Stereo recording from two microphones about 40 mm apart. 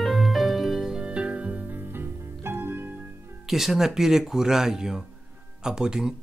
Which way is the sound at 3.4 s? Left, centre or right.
Centre.